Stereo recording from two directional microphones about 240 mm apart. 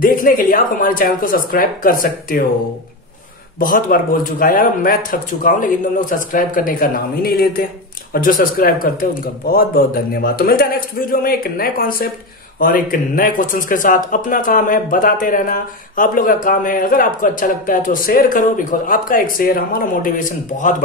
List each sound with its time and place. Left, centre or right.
0.0 s speech: left
3.5 s speech: left